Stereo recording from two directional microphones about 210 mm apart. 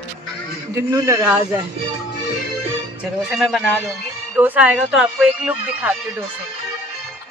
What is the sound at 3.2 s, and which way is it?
Speech, centre (ahead or behind).